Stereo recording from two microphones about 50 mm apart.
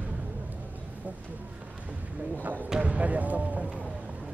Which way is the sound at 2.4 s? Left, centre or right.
Right.